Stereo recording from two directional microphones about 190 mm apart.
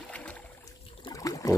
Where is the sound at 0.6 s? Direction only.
20° left (ahead or behind).